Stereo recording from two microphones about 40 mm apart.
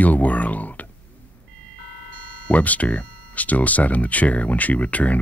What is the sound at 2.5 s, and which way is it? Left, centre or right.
A man's voice, left.